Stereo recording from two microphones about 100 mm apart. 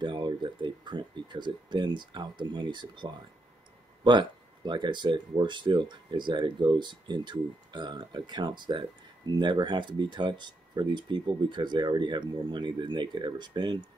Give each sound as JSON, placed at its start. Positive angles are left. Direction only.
{"t": 0.0, "sound": "speech", "side_deg": -50}